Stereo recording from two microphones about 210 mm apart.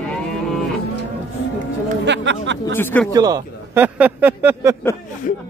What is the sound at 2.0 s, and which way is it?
Music, 55° right (ahead or behind).